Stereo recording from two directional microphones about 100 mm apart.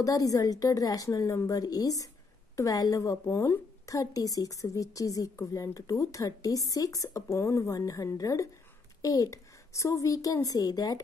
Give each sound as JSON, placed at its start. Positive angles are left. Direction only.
{"t": 0.0, "sound": "a woman's voice", "side_deg": 35}
{"t": 3.3, "sound": "a woman's voice", "side_deg": 25}